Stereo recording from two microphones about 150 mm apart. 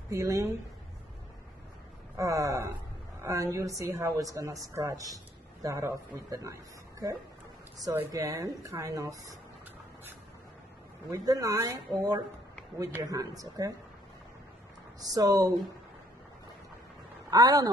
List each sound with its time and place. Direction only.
0.1 s a woman's voice: 20° right (ahead or behind)
2.1 s a woman's voice: 20° right (ahead or behind)
11.1 s a woman's voice: 25° right (ahead or behind)
15.0 s a woman's voice: 25° right (ahead or behind)
17.3 s speech: 25° right (ahead or behind)